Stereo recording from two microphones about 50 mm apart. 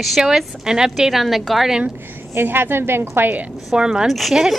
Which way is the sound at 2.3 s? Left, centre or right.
Right.